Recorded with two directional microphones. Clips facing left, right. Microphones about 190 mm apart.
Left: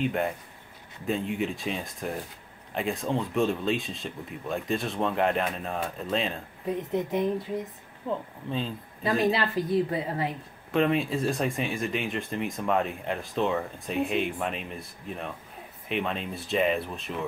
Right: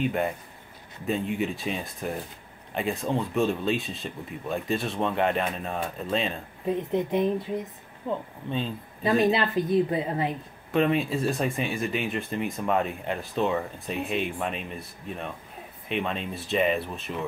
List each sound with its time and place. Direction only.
0.0 s speech: centre (ahead or behind)
6.7 s a woman's voice: 20° right (ahead or behind)
8.1 s speech: centre (ahead or behind)
9.0 s a woman's voice: 20° right (ahead or behind)
10.7 s speech: centre (ahead or behind)